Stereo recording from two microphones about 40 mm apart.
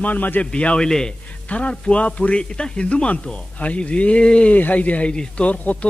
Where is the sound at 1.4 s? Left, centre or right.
Left.